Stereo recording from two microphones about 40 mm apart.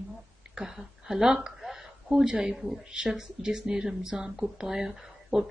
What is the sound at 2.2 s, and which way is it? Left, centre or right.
Speech, right.